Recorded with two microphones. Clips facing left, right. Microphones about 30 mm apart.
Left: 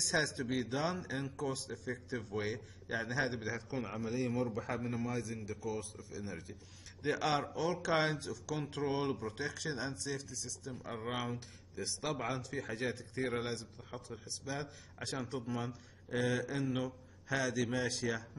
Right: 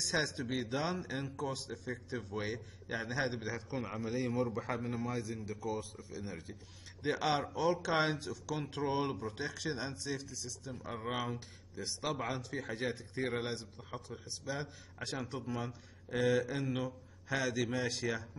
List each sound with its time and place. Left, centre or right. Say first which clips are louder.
0.0 s a man's voice: left 1 dB; centre
7.1 s speech: even; centre